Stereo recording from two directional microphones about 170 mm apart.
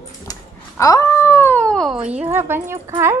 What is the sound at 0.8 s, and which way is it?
Speech, 20° left (ahead or behind).